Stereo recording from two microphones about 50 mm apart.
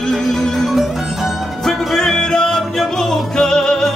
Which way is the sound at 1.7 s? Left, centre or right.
Centre.